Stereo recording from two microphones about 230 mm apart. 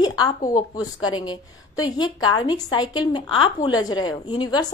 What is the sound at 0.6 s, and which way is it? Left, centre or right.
A woman's voice, centre.